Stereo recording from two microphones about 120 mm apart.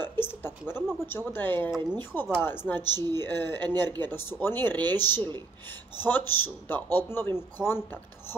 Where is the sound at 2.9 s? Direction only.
35° right (ahead or behind).